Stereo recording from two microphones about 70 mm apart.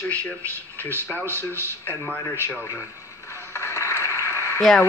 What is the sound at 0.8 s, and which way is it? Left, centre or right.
Speech, left.